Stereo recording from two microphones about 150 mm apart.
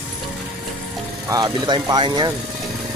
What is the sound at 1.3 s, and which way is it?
Speech, 25° right (ahead or behind).